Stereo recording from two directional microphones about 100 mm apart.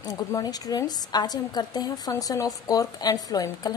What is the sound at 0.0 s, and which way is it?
A woman's voice, 40° left (ahead or behind).